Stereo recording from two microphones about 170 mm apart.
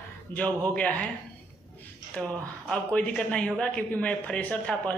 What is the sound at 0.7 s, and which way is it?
Speech, 10° left (ahead or behind).